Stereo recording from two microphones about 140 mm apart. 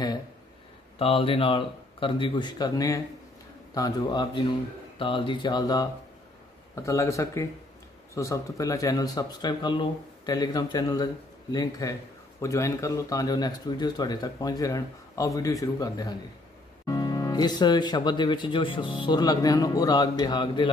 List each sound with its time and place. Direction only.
0.9 s speech: 40° left (ahead or behind)